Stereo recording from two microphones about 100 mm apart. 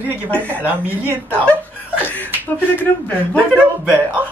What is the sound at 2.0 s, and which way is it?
Chuckle, 20° left (ahead or behind).